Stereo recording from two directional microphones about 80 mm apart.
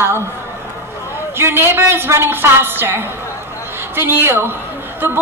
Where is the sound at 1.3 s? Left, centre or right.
Right.